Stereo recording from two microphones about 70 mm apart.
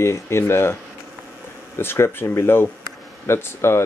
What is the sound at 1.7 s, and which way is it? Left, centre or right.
Speech, left.